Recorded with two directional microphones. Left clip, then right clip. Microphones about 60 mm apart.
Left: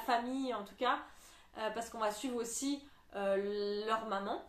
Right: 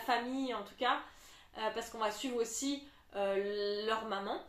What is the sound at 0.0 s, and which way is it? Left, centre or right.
A woman's voice, left.